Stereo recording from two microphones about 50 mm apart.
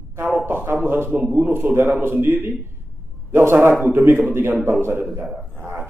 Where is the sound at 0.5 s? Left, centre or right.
Right.